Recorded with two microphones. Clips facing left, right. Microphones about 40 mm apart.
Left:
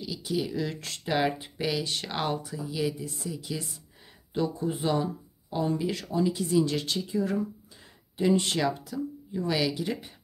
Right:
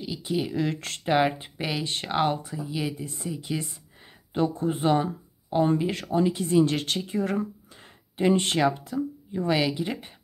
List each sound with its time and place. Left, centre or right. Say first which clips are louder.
0.0 s speech: right 2 dB; right
0.6 s a woman's voice: right 4 dB; right
1.0 s a woman's voice: right 4 dB; right